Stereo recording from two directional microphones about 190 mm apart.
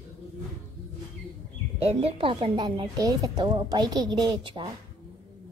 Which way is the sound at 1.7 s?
30° right (ahead or behind).